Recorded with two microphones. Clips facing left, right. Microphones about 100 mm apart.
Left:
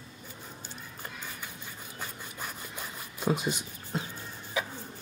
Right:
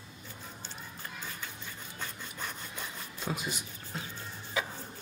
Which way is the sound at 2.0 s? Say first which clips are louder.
Left 1 dB; 10° left (ahead or behind).